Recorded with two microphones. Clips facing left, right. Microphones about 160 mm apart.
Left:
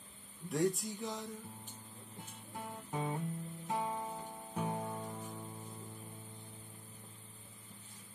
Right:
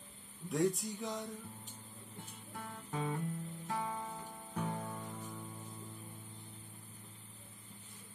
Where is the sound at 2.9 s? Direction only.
20° left (ahead or behind).